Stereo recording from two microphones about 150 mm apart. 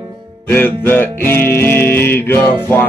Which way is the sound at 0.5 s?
15° left (ahead or behind).